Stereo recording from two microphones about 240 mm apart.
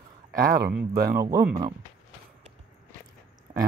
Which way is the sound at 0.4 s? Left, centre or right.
Right.